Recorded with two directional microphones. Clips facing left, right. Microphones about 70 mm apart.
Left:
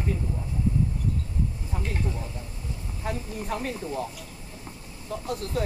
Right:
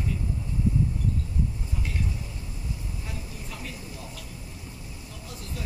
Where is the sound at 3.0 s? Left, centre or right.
Left.